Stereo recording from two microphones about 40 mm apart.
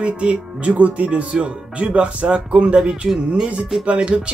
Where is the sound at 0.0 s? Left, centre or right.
Right.